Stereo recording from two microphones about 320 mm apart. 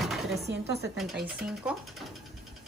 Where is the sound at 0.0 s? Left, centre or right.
Centre.